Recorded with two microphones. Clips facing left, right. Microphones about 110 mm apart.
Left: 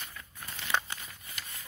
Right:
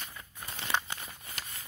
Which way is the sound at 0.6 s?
30° right (ahead or behind).